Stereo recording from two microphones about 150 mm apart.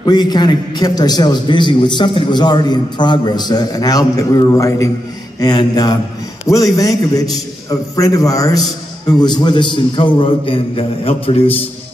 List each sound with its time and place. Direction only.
0.0 s a man's voice: 30° left (ahead or behind)